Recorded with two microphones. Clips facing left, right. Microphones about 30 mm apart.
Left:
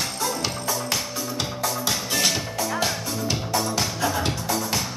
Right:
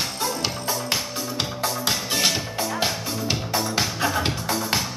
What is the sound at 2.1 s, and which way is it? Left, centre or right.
Music, centre.